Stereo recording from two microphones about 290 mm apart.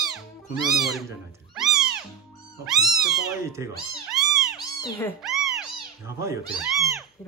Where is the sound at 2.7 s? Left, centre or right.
Centre.